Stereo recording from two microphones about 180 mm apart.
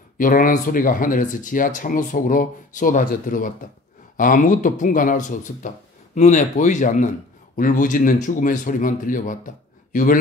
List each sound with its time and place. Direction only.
0.2 s speech: 45° left (ahead or behind)